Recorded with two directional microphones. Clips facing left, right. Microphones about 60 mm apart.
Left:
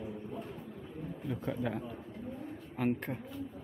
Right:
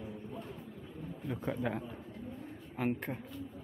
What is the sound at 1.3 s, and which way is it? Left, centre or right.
Speech, centre.